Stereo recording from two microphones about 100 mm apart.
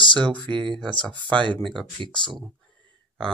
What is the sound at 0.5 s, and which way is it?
Speech, 55° right (ahead or behind).